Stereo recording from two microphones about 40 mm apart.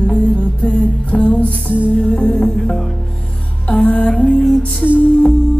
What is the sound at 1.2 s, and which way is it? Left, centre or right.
Music, left.